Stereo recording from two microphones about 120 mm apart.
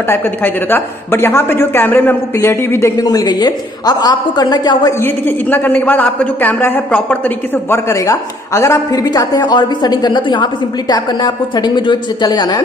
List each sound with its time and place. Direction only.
0.1 s speech: 15° left (ahead or behind)
3.0 s a woman's voice: 30° left (ahead or behind)
5.0 s a man's voice: 15° left (ahead or behind)
7.9 s a woman's voice: 25° left (ahead or behind)